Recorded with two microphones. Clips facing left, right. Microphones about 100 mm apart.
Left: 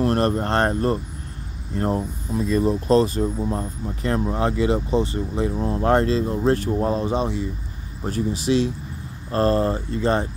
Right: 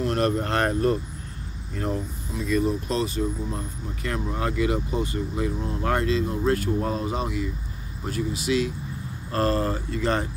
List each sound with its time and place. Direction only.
0.0 s speech: 40° left (ahead or behind); by 10.2 s 20° left (ahead or behind)